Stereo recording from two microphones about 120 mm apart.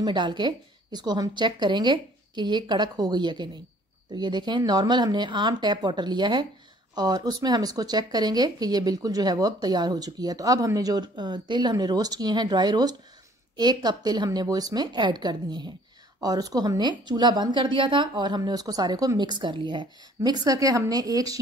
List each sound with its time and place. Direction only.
0.0 s speech: 40° right (ahead or behind)